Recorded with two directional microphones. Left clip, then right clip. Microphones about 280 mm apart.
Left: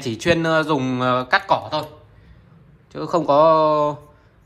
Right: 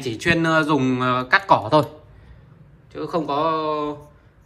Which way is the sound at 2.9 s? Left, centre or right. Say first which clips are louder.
Left 6 dB; centre.